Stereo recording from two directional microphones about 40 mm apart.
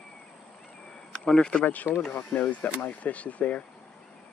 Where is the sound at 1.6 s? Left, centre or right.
Left.